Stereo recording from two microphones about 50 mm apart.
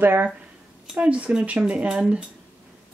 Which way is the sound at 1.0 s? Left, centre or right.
Right.